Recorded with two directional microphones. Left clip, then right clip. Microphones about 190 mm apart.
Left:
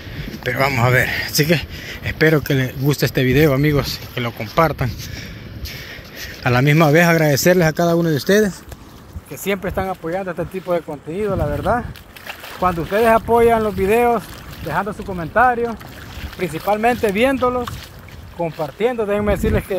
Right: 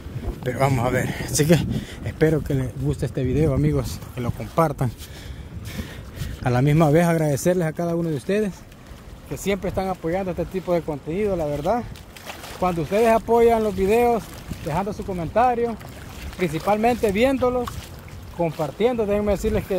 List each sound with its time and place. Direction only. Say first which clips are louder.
0.4 s speech: left 5 dB; 10° right (ahead or behind)
2.0 s speech: left 6 dB; centre (ahead or behind)
6.4 s speech: left 5 dB; 5° right (ahead or behind)
7.5 s speech: left 8 dB; 20° left (ahead or behind)
9.3 s speech: left 3 dB; 10° left (ahead or behind)
17.5 s speech: left 3 dB; 15° left (ahead or behind)
18.4 s speech: left 2 dB; centre (ahead or behind)